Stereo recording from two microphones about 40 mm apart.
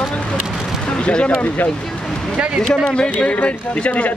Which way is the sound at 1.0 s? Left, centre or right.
Left.